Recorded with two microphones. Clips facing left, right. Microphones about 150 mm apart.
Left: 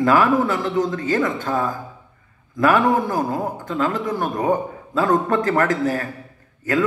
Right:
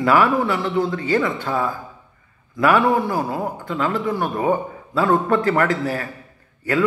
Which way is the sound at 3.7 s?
45° left (ahead or behind).